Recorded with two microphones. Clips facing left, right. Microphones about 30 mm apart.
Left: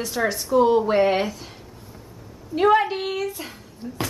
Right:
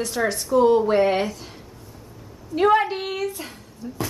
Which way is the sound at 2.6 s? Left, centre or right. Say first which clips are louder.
Even; centre.